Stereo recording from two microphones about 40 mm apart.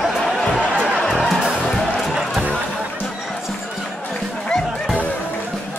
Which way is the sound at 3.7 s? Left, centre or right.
Centre.